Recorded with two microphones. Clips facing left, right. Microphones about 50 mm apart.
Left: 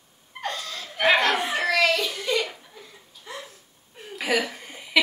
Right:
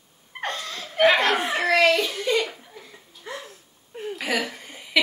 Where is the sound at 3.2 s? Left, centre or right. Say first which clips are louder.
Right 2 dB; right.